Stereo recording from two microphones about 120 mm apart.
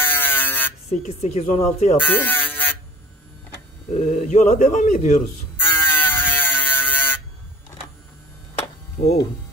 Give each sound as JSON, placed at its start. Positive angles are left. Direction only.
{"t": 0.0, "sound": "buzzer", "side_deg": 15}
{"t": 0.8, "sound": "a woman's voice", "side_deg": 65}
{"t": 2.0, "sound": "electric shaver", "side_deg": 15}
{"t": 3.9, "sound": "speech", "side_deg": 70}
{"t": 5.6, "sound": "buzzer", "side_deg": 15}